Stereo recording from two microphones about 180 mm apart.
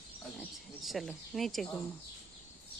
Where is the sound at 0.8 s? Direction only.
Centre (ahead or behind).